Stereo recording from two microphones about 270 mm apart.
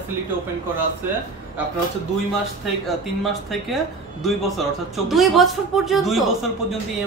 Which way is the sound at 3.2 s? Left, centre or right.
Centre.